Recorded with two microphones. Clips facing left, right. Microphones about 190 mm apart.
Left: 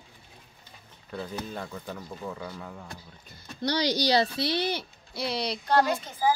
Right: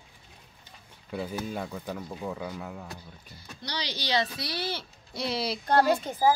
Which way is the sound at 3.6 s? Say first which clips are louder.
Left 10 dB; 45° left (ahead or behind).